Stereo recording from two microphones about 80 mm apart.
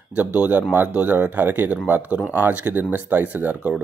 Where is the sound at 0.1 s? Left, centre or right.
Centre.